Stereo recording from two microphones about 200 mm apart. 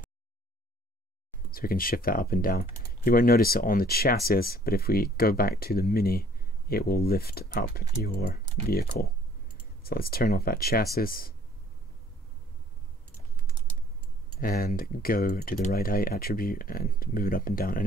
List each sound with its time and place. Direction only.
1.5 s speech: 45° left (ahead or behind)
14.4 s speech: 45° left (ahead or behind)